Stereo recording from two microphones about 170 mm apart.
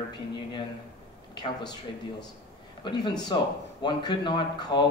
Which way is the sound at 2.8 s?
25° left (ahead or behind).